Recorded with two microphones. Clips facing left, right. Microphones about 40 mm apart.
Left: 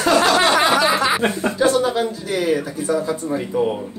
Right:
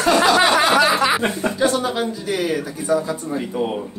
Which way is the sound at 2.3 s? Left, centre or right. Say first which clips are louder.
Left 2 dB; centre.